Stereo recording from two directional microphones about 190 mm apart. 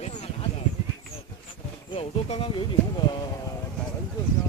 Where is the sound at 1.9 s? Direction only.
30° left (ahead or behind).